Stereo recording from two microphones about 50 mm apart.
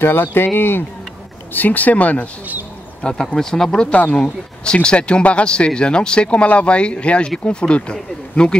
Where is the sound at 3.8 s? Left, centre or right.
Left.